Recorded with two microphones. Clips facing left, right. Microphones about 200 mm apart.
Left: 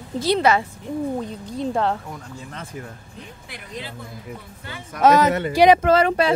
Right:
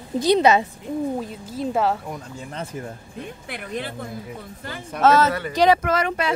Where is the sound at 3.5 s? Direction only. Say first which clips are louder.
Right 5 dB; 55° right (ahead or behind).